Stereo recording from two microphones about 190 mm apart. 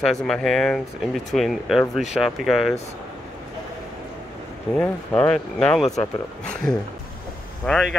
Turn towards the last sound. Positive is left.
turn(degrees=5)  # may be behind; listen again after turning